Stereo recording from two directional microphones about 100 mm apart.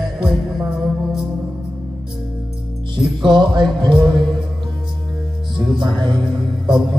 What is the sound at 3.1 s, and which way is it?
Music, 50° right (ahead or behind).